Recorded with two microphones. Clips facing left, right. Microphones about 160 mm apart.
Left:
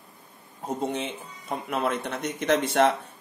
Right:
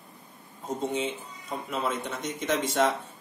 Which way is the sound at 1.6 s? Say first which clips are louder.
Left 3 dB; 60° left (ahead or behind).